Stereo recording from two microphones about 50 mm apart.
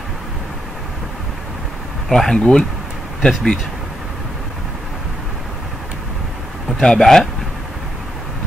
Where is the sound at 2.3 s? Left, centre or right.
Centre.